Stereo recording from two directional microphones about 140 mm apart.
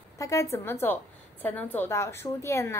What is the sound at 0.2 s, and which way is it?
A woman's voice, 25° left (ahead or behind).